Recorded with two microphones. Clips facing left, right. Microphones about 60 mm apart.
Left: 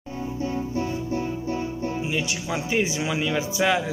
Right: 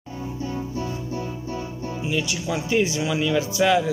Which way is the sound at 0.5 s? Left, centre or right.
Left.